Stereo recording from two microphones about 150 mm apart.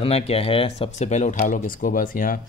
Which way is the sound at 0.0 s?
40° left (ahead or behind).